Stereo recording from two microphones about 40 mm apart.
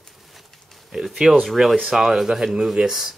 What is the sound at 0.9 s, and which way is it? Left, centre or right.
Speech, centre.